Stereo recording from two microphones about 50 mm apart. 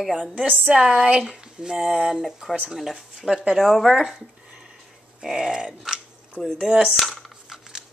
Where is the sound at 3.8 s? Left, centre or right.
Centre.